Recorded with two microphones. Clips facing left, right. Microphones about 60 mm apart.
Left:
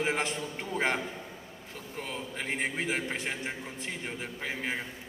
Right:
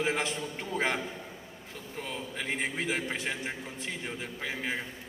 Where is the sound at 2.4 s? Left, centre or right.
Left.